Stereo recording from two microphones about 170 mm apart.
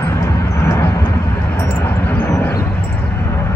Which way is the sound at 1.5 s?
15° left (ahead or behind).